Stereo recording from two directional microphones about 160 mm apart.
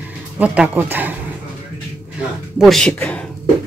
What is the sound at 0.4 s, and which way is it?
Speech, 10° right (ahead or behind).